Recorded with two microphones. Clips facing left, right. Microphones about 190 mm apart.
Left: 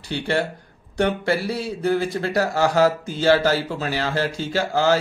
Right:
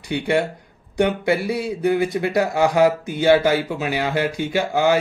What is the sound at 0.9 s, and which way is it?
Speech, 15° right (ahead or behind).